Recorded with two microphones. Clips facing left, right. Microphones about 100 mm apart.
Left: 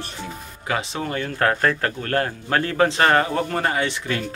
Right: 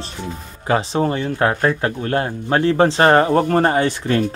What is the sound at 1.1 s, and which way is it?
Speech, 20° right (ahead or behind).